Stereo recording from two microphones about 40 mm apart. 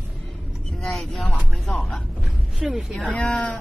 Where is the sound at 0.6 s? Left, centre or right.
Centre.